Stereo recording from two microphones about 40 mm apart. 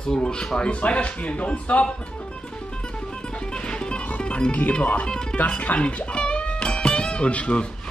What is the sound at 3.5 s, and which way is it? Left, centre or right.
Music, left.